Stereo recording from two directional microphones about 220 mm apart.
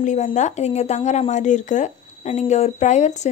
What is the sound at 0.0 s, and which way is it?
Speech, 30° left (ahead or behind).